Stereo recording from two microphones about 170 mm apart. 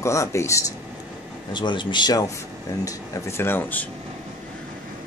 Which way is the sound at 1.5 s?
25° left (ahead or behind).